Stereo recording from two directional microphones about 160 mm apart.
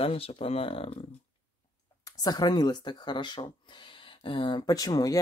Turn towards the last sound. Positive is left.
turn(degrees=20)  # may be behind; listen again after turning